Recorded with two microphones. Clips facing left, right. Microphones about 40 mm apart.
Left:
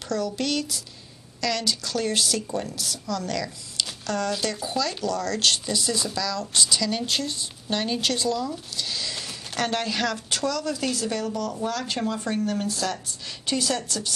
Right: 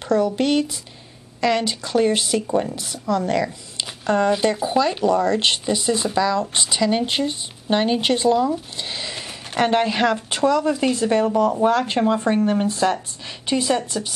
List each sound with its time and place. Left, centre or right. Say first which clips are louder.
0.1 s speech: right 8 dB; right